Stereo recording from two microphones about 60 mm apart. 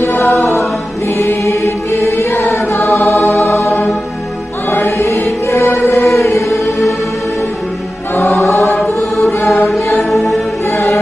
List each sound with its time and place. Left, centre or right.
0.0 s music: left
1.1 s choir: left
3.0 s music: left
6.5 s music: centre
9.9 s music: centre
10.7 s music: left